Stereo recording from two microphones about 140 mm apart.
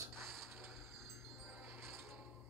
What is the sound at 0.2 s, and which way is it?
Wind chime, centre (ahead or behind).